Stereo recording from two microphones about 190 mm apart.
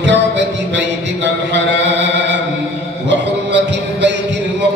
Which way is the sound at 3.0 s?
70° right (ahead or behind).